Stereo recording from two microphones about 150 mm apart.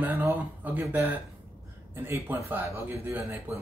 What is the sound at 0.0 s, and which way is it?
A man's voice, 15° right (ahead or behind).